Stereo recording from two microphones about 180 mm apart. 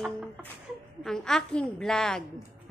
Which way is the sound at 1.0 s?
5° left (ahead or behind).